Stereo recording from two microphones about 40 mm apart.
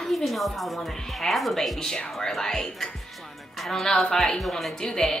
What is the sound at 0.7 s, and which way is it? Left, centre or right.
A woman's voice, centre.